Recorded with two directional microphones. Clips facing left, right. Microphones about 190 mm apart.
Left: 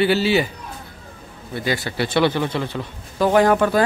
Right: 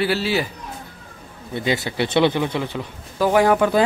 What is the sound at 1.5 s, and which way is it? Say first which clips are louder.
Speech: right 1 dB; 25° right (ahead or behind).